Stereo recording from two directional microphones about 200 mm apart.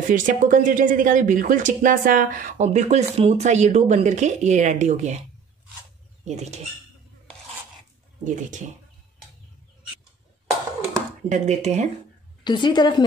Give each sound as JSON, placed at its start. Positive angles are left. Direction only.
{"t": 0.1, "sound": "speech", "side_deg": -40}
{"t": 6.2, "sound": "speech", "side_deg": -35}
{"t": 8.2, "sound": "speech", "side_deg": -40}
{"t": 11.2, "sound": "speech", "side_deg": -35}
{"t": 12.4, "sound": "a woman's voice", "side_deg": 20}